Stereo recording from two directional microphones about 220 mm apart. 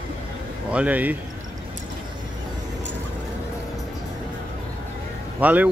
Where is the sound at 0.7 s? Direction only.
5° right (ahead or behind).